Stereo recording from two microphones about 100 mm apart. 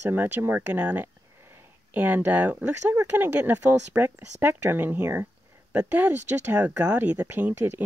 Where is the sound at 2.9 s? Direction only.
25° right (ahead or behind).